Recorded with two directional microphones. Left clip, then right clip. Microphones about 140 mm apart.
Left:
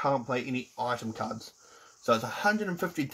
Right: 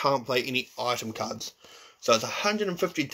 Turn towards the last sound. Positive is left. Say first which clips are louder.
# right 4 dB
turn(degrees=35)  # may be behind; listen again after turning